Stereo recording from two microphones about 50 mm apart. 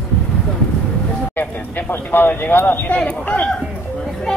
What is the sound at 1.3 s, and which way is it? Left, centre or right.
Speech, left.